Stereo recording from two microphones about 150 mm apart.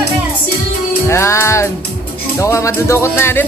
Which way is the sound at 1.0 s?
20° left (ahead or behind).